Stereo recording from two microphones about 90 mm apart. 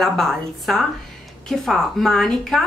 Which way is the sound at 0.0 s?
5° left (ahead or behind).